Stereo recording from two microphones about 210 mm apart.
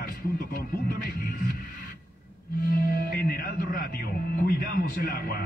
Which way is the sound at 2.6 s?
45° left (ahead or behind).